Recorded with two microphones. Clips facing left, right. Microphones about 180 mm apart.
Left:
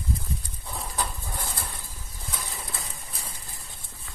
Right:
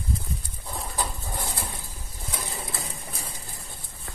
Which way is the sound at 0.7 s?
5° right (ahead or behind).